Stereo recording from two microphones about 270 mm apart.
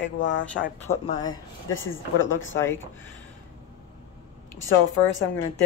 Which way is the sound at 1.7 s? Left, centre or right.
Left.